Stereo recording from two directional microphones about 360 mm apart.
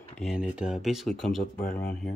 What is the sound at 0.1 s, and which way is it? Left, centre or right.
Speech, centre.